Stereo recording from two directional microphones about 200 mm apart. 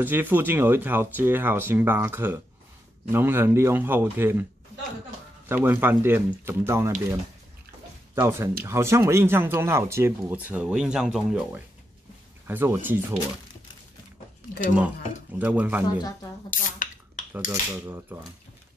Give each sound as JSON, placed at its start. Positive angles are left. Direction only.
{"t": 0.0, "sound": "speech", "side_deg": -10}
{"t": 5.5, "sound": "speech", "side_deg": -10}
{"t": 8.1, "sound": "speech", "side_deg": -10}
{"t": 15.3, "sound": "speech", "side_deg": -10}
{"t": 16.0, "sound": "speech", "side_deg": 15}
{"t": 16.4, "sound": "drip", "side_deg": 40}
{"t": 17.5, "sound": "speech", "side_deg": -15}